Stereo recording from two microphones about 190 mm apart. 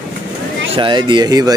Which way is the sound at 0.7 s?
25° right (ahead or behind).